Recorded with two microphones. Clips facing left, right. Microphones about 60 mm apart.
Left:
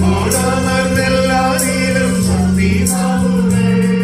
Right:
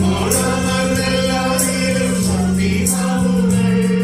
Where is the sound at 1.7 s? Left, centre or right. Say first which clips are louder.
Left 3 dB; left.